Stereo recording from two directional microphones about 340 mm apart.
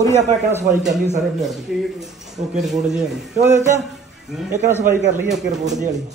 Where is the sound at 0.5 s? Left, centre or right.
Centre.